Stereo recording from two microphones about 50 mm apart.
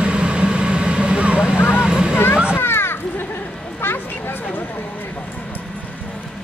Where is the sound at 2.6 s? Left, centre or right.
Left.